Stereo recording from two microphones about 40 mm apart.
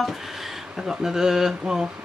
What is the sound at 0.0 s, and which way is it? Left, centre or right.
Speech, centre.